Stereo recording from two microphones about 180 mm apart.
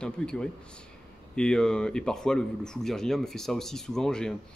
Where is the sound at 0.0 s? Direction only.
5° left (ahead or behind).